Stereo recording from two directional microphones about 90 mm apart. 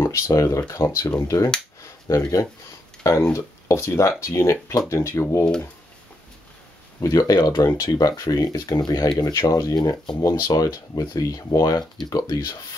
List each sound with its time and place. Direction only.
0.0 s speech: 35° left (ahead or behind)
7.0 s speech: 40° left (ahead or behind)
9.8 s speech: 55° left (ahead or behind)
10.4 s speech: 45° left (ahead or behind)